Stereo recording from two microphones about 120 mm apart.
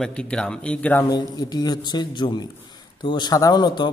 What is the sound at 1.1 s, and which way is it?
Speech, 35° left (ahead or behind).